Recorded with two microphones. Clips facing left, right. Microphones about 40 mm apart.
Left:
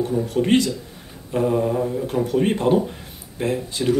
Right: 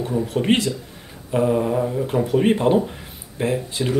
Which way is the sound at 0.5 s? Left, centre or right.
Right.